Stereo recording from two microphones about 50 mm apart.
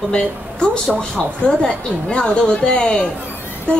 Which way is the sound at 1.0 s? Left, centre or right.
Centre.